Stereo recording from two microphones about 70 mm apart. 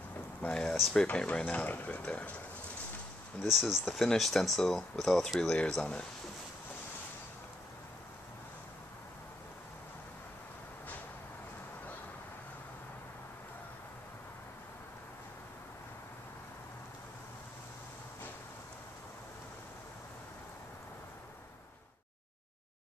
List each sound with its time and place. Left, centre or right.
0.4 s speech: centre
3.4 s speech: centre